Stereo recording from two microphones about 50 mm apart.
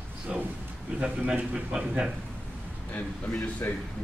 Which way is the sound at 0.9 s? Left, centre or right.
Right.